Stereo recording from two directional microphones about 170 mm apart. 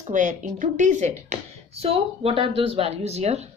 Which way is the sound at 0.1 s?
45° right (ahead or behind).